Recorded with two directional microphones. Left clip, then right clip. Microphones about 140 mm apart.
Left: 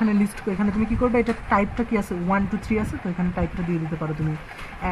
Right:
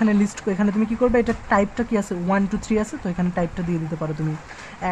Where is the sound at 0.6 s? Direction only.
25° right (ahead or behind).